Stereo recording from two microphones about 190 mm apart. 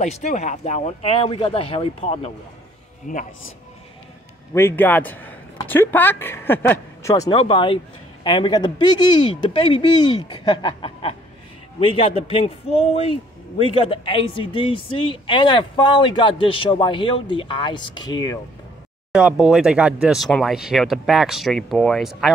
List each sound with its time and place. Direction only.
0.0 s speech: 35° left (ahead or behind)
3.1 s speech: 45° left (ahead or behind)
4.6 s a man's voice: 10° left (ahead or behind)
19.1 s speech: 5° right (ahead or behind)